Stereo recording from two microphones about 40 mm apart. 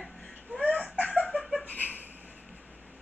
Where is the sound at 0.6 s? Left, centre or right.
Left.